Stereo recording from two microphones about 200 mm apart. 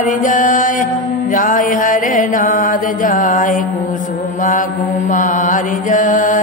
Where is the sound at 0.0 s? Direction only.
40° left (ahead or behind).